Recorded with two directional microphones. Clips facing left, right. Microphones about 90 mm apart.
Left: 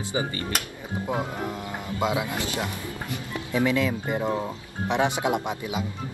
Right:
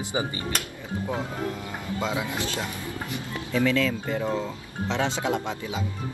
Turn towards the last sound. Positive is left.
turn(degrees=15)  # may be behind; listen again after turning